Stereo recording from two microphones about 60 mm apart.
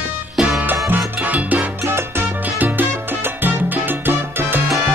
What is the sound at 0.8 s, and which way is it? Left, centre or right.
Salsa music, right.